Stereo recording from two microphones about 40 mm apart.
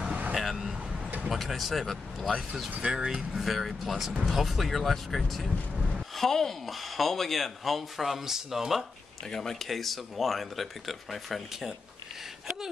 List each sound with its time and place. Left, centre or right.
0.3 s vehicle: centre
1.3 s speech: centre
2.8 s speech: right
3.2 s speech: centre
9.2 s speech: centre